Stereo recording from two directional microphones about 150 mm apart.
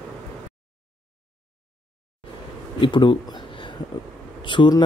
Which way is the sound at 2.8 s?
30° left (ahead or behind).